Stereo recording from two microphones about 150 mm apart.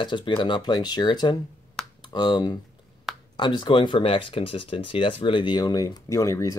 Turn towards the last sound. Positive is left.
turn(degrees=20)  # may be behind; listen again after turning